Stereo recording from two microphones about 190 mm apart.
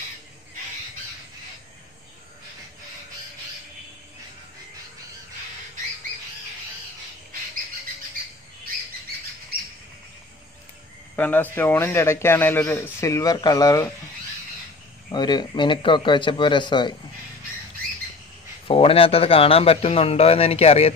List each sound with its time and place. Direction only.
11.1 s speech: 10° left (ahead or behind)
15.0 s a man's voice: 20° left (ahead or behind)
18.7 s a man's voice: 30° left (ahead or behind)